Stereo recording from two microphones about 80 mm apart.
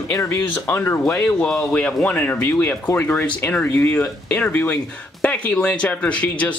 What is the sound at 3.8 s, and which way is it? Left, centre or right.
Speech, left.